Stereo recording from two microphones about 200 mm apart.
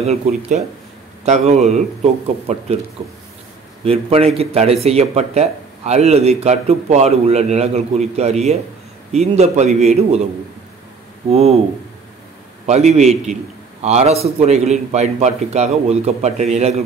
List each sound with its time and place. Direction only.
0.0 s speech: 30° right (ahead or behind)
3.8 s a man's voice: 30° right (ahead or behind)
11.2 s speech: 30° right (ahead or behind)
12.6 s speech: 35° right (ahead or behind)